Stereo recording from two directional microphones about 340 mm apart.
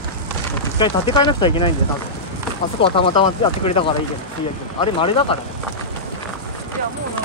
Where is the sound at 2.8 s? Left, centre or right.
Centre.